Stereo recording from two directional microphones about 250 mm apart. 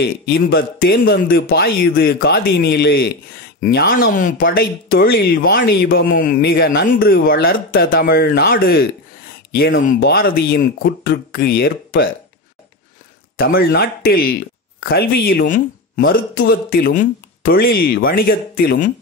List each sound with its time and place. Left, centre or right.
0.0 s speech: left
9.6 s speech: left
13.4 s speech: left